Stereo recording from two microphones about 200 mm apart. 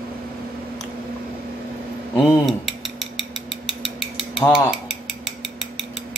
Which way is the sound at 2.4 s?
Centre (ahead or behind).